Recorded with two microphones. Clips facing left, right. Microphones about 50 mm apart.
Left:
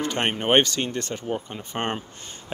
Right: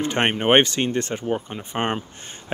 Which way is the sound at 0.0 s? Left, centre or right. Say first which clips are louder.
Right 4 dB; right.